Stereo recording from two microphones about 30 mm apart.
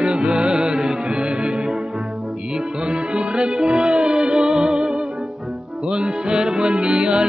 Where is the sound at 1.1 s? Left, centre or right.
Right.